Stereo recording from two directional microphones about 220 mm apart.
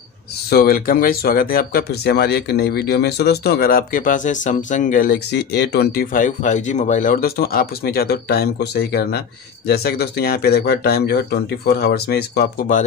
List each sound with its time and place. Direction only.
0.5 s speech: 45° left (ahead or behind)